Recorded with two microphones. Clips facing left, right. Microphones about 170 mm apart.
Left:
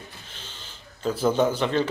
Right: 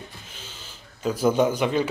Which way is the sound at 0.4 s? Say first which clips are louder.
Right 1 dB; 10° right (ahead or behind).